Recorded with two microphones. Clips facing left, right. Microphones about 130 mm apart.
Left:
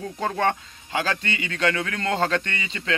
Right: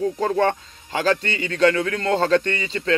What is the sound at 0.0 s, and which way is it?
A man's voice, 35° right (ahead or behind).